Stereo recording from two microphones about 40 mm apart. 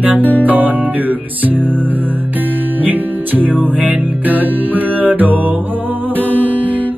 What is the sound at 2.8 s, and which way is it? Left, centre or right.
Music, right.